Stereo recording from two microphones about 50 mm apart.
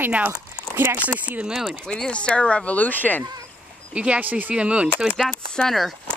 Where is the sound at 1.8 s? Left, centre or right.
Centre; by 3.2 s left.